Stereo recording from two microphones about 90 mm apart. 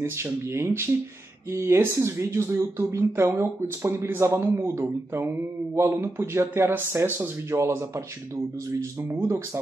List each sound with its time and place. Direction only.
0.0 s speech: 30° right (ahead or behind)